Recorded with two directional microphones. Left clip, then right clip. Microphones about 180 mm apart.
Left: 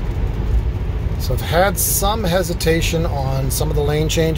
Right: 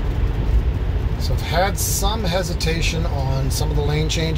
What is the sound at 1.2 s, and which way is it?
Speech, 45° left (ahead or behind).